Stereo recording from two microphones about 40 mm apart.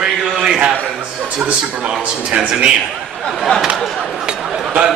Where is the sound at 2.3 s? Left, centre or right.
Right.